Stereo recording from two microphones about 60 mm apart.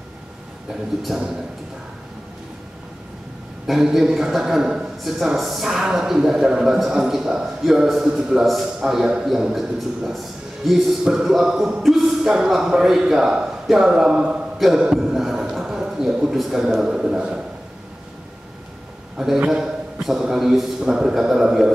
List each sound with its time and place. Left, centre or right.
1.1 s a man's voice: centre
3.6 s a man's voice: centre
14.6 s a man's voice: centre
15.0 s a sound: centre
19.1 s a man's voice: centre